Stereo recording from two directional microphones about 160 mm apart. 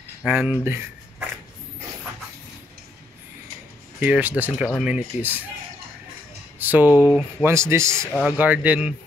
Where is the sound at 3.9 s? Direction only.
10° right (ahead or behind).